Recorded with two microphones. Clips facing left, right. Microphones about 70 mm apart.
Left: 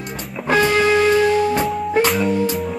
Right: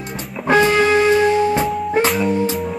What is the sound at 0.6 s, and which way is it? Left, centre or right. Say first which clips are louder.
Music: right 1 dB; right.